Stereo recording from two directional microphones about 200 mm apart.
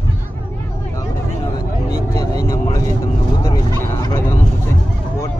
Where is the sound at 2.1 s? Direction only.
20° left (ahead or behind).